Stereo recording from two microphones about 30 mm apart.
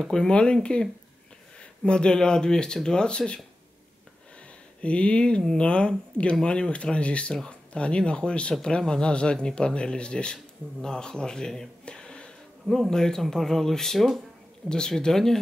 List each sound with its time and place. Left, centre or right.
0.0 s speech: centre
0.3 s speech: left
4.8 s speech: left
8.6 s speech: left
10.3 s speech: left
11.8 s a sound: left
12.9 s speech: centre
14.7 s speech: left